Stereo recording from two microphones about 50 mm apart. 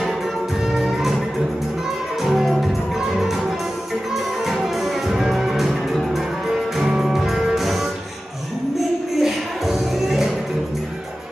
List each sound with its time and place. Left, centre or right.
0.7 s music: centre
2.2 s music: centre
4.5 s music: centre
6.8 s music: centre